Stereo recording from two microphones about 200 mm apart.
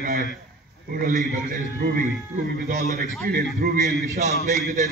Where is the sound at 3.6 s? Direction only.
50° right (ahead or behind).